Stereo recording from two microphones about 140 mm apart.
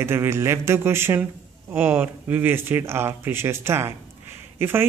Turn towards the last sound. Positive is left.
turn(degrees=-15)  # may be behind; listen again after turning